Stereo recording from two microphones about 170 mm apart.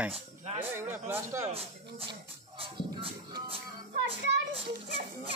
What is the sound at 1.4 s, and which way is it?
Music, 35° right (ahead or behind).